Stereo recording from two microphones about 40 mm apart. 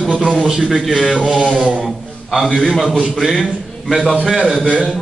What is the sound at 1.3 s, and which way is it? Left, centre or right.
Mantra, right.